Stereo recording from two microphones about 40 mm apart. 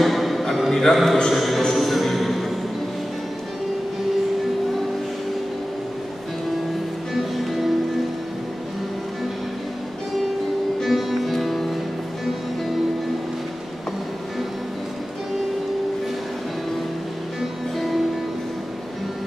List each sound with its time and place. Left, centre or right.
0.0 s a sound: centre
1.3 s speech: centre
1.6 s a sound: centre
7.2 s music: centre
10.8 s music: centre
17.7 s music: centre